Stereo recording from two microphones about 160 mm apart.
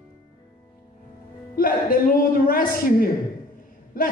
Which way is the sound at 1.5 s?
65° left (ahead or behind).